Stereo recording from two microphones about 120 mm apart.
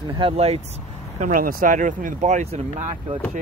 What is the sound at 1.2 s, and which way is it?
Speech, 90° right.